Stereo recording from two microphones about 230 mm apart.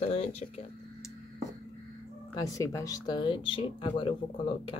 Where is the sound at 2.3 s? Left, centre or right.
Centre.